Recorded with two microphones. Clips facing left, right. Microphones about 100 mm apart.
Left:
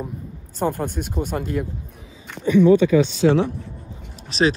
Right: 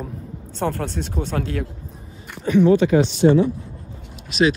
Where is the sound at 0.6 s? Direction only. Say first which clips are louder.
Left 1 dB; 15° left (ahead or behind).